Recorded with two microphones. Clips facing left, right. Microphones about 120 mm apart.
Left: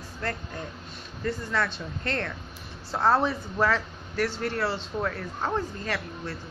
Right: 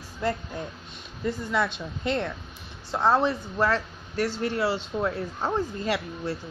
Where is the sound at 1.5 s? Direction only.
10° right (ahead or behind).